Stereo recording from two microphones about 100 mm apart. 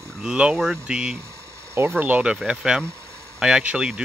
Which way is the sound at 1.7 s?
20° right (ahead or behind).